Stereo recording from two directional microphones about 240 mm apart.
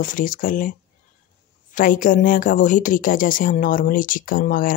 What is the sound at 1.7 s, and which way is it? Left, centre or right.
A woman's voice, left.